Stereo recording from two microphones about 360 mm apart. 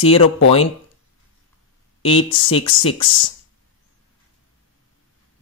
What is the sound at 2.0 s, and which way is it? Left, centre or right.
Speech, centre.